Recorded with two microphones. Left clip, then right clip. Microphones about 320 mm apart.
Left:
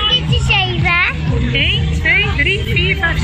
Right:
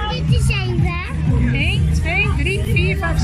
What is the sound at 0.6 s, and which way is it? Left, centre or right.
Music, centre.